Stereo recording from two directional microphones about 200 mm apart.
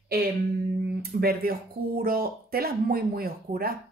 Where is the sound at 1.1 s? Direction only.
40° right (ahead or behind).